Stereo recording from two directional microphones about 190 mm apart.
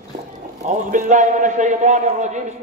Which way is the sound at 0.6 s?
40° right (ahead or behind).